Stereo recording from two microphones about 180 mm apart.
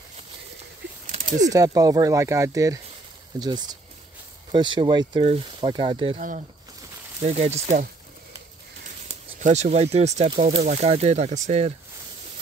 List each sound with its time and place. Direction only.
1.5 s speech: 20° right (ahead or behind)
6.1 s speech: 45° right (ahead or behind)
9.4 s speech: 40° right (ahead or behind)